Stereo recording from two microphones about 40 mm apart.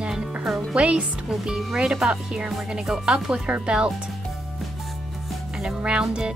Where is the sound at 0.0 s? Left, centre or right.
Right.